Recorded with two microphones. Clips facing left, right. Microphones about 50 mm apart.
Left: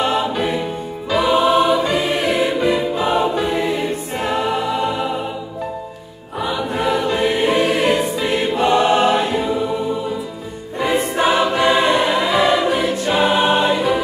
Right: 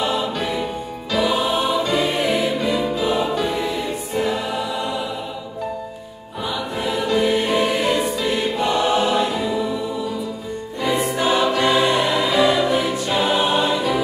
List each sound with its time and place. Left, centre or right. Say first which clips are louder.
1.3 s choir: left 6 dB; left
2.2 s music: left 2 dB; left
3.0 s choir: left 3 dB; left
3.3 s music: left 3 dB; left
6.8 s choir: left 5 dB; left
7.1 s music: left 1 dB; left
8.0 s choir: left 2 dB; left
8.5 s choir: left 6 dB; left
10.8 s choir: left 3 dB; left
11.3 s choir: even; centre
12.2 s music: left 1 dB; centre
12.7 s choir: left 2 dB; left